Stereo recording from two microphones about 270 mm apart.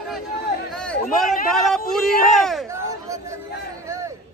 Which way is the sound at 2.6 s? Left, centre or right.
Centre.